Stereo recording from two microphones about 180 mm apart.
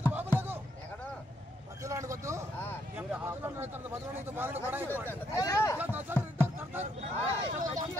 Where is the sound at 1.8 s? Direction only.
15° right (ahead or behind).